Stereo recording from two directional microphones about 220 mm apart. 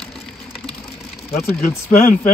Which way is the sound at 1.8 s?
35° left (ahead or behind).